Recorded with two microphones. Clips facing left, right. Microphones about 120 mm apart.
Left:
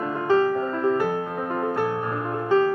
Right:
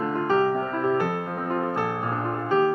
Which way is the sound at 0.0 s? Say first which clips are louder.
Left 1 dB; centre (ahead or behind).